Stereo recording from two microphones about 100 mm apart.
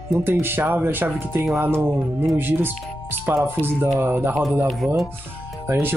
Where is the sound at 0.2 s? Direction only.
20° right (ahead or behind).